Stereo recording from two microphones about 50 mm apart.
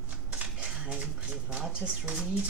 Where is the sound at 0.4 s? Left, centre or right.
Right.